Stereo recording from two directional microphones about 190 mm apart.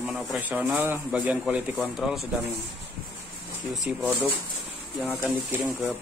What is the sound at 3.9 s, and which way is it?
Speech, 5° right (ahead or behind).